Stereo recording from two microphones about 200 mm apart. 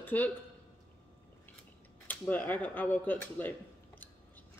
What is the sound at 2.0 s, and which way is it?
Speech, 10° left (ahead or behind).